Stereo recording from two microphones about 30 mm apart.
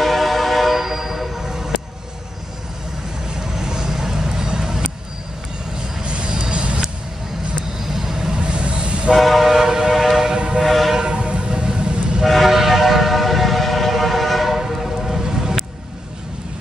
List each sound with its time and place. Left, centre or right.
0.0 s train: centre
0.7 s train: centre
3.4 s vehicle: centre
6.0 s vehicle: right
7.8 s vehicle: centre
8.4 s vehicle: right
9.1 s train: centre
11.0 s train: right
12.3 s vehicle: centre
12.5 s train: centre